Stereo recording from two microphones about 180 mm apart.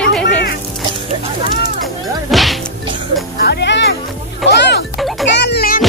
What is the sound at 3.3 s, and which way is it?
Music, 60° left (ahead or behind).